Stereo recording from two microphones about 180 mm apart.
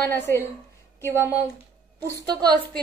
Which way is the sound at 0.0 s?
10° left (ahead or behind).